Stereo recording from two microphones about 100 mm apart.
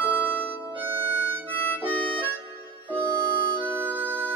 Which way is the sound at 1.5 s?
15° left (ahead or behind).